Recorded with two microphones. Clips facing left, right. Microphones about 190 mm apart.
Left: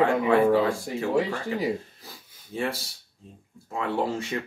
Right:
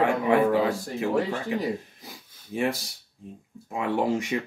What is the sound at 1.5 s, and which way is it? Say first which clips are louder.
Speech: even; 15° right (ahead or behind).